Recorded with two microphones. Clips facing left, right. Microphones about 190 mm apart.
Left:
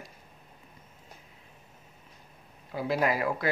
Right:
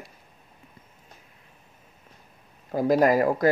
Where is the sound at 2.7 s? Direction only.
45° right (ahead or behind).